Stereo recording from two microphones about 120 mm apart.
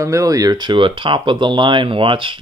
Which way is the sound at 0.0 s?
25° right (ahead or behind).